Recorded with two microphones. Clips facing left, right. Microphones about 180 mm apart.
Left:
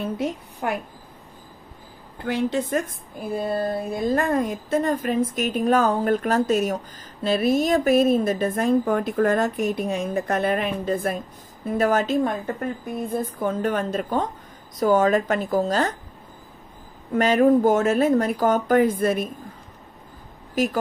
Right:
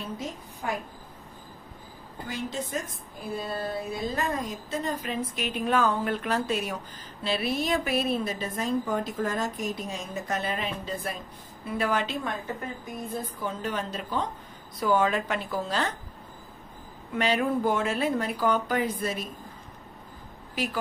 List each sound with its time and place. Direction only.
0.0 s a woman's voice: 65° left (ahead or behind)
2.2 s a woman's voice: 65° left (ahead or behind); by 15.9 s 45° left (ahead or behind)
17.1 s a woman's voice: 45° left (ahead or behind)
20.6 s a woman's voice: 45° left (ahead or behind)